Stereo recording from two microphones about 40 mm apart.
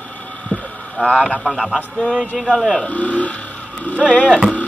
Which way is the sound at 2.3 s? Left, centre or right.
Centre.